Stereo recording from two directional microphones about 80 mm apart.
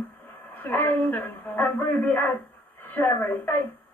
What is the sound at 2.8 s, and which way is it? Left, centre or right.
Speech, left.